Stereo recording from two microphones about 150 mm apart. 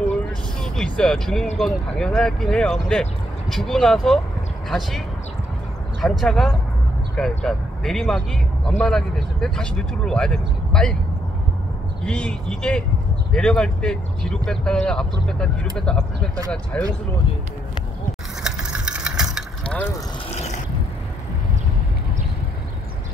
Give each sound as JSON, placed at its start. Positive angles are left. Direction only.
{"t": 0.1, "sound": "vehicle", "side_deg": 5}
{"t": 1.6, "sound": "speech", "side_deg": 5}
{"t": 12.1, "sound": "speech", "side_deg": 5}
{"t": 18.4, "sound": "engine", "side_deg": -5}
{"t": 19.6, "sound": "vehicle", "side_deg": 5}
{"t": 20.3, "sound": "vehicle", "side_deg": 50}